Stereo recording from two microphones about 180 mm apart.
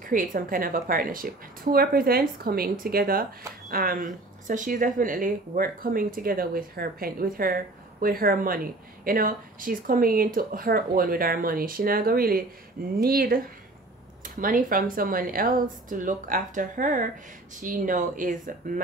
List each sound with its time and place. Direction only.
0.0 s speech: 50° right (ahead or behind)